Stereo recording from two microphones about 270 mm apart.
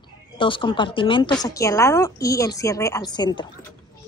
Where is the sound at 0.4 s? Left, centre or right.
Centre.